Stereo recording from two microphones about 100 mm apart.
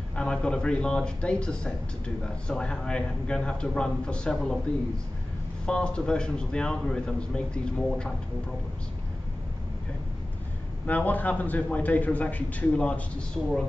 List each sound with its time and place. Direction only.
0.1 s a man's voice: 10° left (ahead or behind)
5.7 s a man's voice: 10° left (ahead or behind)
10.9 s a man's voice: 15° left (ahead or behind)